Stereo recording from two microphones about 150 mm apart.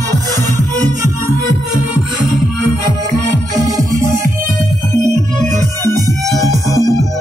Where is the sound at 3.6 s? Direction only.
25° right (ahead or behind).